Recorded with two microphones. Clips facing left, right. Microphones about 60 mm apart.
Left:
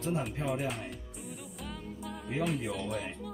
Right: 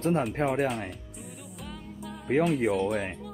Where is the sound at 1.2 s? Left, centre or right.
Centre.